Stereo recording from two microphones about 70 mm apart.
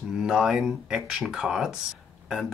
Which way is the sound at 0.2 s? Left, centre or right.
Centre.